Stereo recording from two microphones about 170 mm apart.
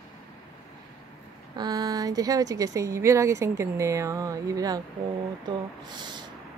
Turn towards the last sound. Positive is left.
turn(degrees=-25)  # may be behind; listen again after turning